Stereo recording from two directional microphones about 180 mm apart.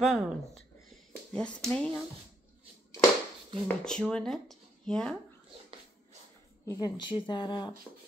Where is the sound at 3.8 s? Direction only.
5° left (ahead or behind).